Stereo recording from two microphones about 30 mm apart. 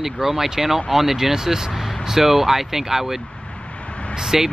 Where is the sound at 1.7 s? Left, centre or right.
Centre.